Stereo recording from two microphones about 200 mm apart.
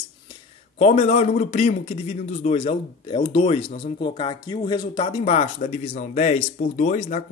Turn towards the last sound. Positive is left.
turn(degrees=35)  # may be behind; listen again after turning